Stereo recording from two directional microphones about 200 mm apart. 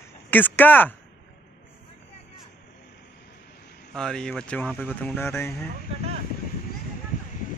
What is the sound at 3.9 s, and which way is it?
Speech, 5° left (ahead or behind).